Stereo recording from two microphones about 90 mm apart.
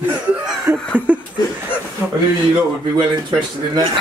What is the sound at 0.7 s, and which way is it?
Chuckle, 25° right (ahead or behind).